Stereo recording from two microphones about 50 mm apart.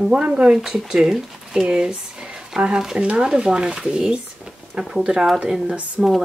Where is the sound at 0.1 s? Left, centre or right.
Right.